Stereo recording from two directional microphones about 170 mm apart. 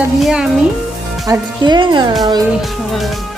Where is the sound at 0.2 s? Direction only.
5° right (ahead or behind).